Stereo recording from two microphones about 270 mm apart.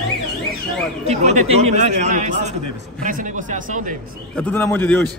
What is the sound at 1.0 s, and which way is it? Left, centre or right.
A man's voice, right.